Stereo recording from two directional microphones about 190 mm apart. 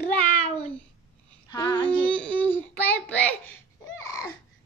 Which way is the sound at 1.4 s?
20° left (ahead or behind).